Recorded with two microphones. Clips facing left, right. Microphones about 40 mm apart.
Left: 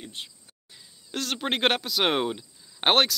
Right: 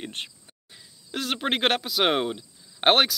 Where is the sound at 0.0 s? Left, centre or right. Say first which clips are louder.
Right 4 dB; right.